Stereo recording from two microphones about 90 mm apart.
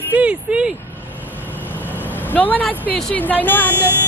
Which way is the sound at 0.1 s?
15° right (ahead or behind).